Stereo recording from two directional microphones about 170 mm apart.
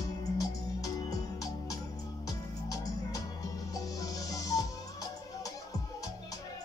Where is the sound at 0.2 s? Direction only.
20° left (ahead or behind).